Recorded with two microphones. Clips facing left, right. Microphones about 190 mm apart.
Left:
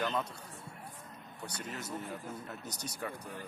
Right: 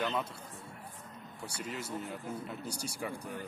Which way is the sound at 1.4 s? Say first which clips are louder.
Right 2 dB; 10° right (ahead or behind).